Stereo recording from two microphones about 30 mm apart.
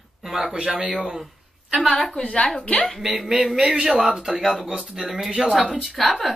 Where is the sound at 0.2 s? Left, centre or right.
Centre.